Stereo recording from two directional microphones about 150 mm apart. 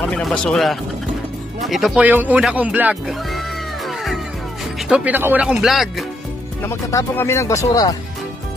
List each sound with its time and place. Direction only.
0.1 s speech: 5° left (ahead or behind)
6.6 s speech: 20° left (ahead or behind)